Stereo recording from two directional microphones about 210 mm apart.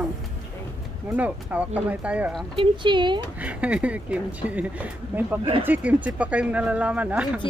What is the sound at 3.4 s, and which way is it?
Speech, 5° right (ahead or behind).